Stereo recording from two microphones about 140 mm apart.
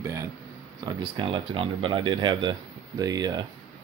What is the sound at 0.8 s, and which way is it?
Speech, 35° right (ahead or behind).